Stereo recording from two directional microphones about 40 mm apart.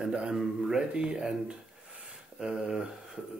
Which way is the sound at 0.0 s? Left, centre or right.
Centre.